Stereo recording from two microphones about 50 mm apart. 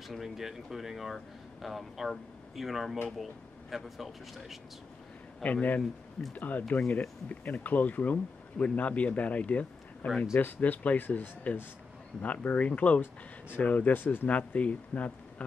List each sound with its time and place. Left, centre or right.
0.1 s speech: centre
5.4 s speech: left
14.3 s speech: left